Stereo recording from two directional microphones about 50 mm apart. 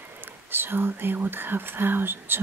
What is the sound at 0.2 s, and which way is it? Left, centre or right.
Speech, right.